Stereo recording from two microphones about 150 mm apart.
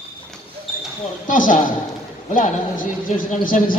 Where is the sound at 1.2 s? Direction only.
60° left (ahead or behind).